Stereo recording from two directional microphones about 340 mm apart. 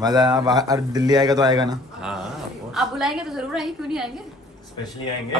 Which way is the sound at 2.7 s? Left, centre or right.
Centre.